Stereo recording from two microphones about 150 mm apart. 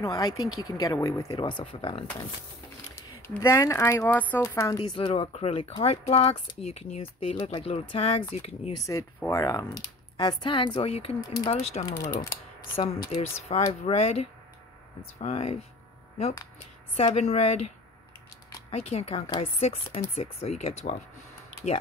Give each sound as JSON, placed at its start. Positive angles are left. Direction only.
{"t": 0.0, "sound": "speech", "side_deg": 25}
{"t": 1.3, "sound": "speech", "side_deg": 30}
{"t": 1.6, "sound": "speech", "side_deg": 45}
{"t": 3.2, "sound": "speech", "side_deg": 15}
{"t": 4.4, "sound": "speech", "side_deg": 20}
{"t": 4.9, "sound": "speech", "side_deg": 35}
{"t": 8.8, "sound": "speech", "side_deg": 20}
{"t": 12.0, "sound": "speech", "side_deg": 75}
{"t": 13.1, "sound": "speech", "side_deg": 45}
{"t": 16.9, "sound": "speech", "side_deg": 45}
{"t": 18.7, "sound": "speech", "side_deg": 45}